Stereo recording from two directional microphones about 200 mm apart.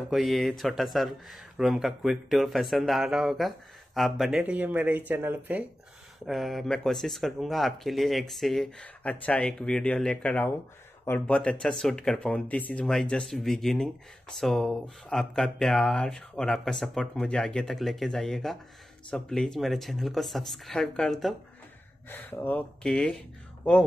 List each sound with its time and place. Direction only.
0.1 s speech: centre (ahead or behind)